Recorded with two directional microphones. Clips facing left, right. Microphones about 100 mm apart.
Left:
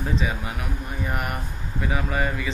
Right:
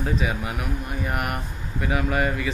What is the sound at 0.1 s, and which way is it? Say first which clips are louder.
Speech: right 1 dB; 5° right (ahead or behind).